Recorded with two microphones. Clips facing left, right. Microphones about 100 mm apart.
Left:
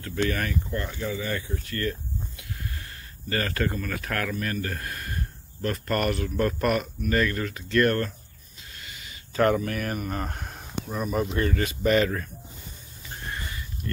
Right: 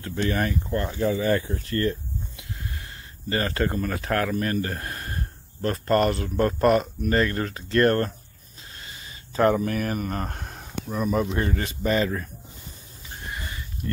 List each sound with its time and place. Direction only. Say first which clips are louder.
0.3 s speech: right 3 dB; 30° right (ahead or behind)
8.7 s a sound: right 1 dB; 30° right (ahead or behind)
9.8 s speech: right 2 dB; 40° right (ahead or behind)
11.3 s speech: left 1 dB; 30° right (ahead or behind)